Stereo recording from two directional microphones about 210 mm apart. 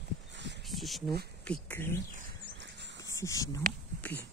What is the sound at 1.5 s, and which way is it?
Speech, 10° left (ahead or behind).